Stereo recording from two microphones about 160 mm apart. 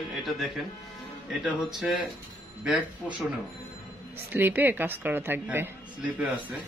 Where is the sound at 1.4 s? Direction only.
Centre (ahead or behind).